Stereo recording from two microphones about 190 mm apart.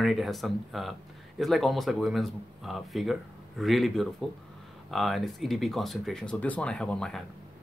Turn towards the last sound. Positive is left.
turn(degrees=5)  # may be behind; listen again after turning